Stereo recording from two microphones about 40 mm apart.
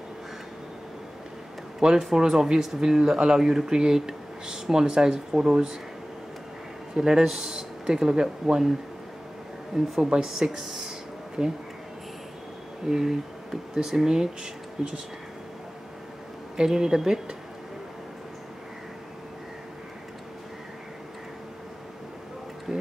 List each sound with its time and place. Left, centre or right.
2.0 s speech: centre
7.0 s speech: centre
9.9 s speech: centre
10.2 s speech: centre
12.8 s speech: centre
16.5 s speech: centre
22.7 s tick-tock: centre